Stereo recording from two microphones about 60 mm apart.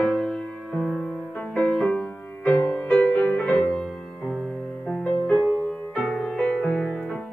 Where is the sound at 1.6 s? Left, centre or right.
Left.